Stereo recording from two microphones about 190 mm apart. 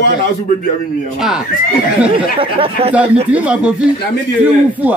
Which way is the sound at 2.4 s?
30° right (ahead or behind).